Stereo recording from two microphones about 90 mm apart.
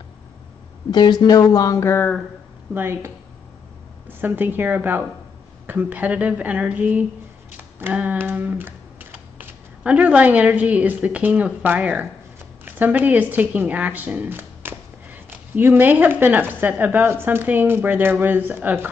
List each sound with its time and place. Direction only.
0.9 s speech: 50° left (ahead or behind); by 2.0 s 30° left (ahead or behind)
2.7 s hands: 25° right (ahead or behind)
4.2 s hands: 20° right (ahead or behind)
5.7 s speech: 20° right (ahead or behind)
7.5 s hands: 20° right (ahead or behind)
9.4 s speech: 20° right (ahead or behind)